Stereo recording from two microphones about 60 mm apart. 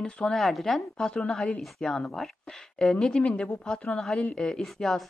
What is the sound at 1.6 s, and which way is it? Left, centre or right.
Speech, centre.